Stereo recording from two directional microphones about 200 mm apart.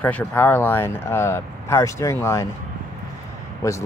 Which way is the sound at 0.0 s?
10° left (ahead or behind).